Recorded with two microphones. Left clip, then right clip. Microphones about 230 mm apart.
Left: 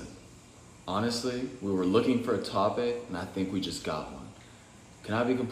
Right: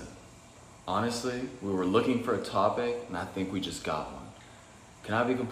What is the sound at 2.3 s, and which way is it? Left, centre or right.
Speech, centre.